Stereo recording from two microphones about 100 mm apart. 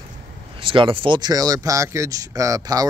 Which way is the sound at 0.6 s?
60° right (ahead or behind).